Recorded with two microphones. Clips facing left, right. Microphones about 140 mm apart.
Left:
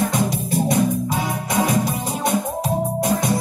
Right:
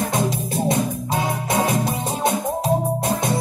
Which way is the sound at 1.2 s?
25° right (ahead or behind).